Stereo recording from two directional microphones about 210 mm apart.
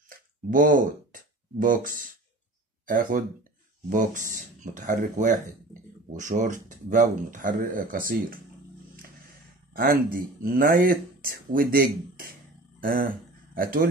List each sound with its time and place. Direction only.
0.1 s a sound: 40° right (ahead or behind)
2.9 s speech: 40° right (ahead or behind)
9.8 s speech: 45° right (ahead or behind)